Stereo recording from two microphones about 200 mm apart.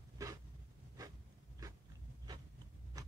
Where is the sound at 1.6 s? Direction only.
20° right (ahead or behind).